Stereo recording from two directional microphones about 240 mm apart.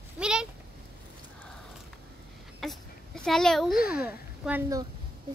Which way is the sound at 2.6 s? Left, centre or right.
Centre.